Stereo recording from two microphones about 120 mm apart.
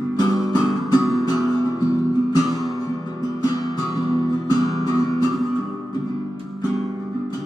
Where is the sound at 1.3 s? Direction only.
30° left (ahead or behind).